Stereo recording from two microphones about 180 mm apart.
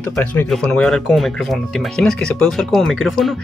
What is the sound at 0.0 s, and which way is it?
Speech, 5° left (ahead or behind).